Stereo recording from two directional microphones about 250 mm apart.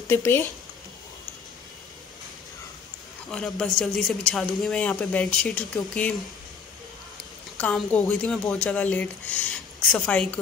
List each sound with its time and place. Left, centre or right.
0.1 s speech: centre
3.3 s speech: centre
7.5 s speech: centre